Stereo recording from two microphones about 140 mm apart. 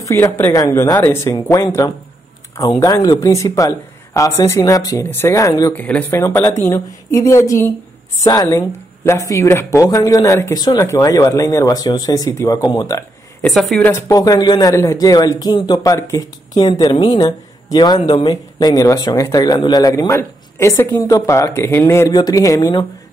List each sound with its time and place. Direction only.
0.0 s speech: 20° left (ahead or behind)
5.7 s speech: 10° left (ahead or behind); by 13.0 s 30° left (ahead or behind)
13.4 s speech: centre (ahead or behind)
13.8 s speech: 20° left (ahead or behind)
22.1 s speech: 25° left (ahead or behind)